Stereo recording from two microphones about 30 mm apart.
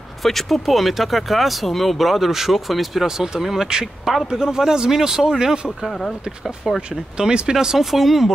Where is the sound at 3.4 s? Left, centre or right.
Centre.